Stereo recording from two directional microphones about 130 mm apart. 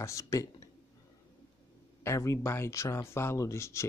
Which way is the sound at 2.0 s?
25° left (ahead or behind).